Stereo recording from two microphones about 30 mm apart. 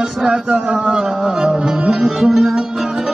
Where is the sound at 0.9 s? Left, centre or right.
Right.